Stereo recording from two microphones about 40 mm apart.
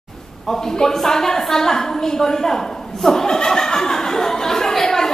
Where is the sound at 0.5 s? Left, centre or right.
Centre.